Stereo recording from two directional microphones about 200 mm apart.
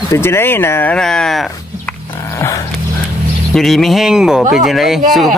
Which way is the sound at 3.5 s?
Centre (ahead or behind).